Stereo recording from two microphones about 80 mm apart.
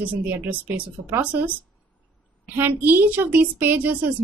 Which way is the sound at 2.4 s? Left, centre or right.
Right.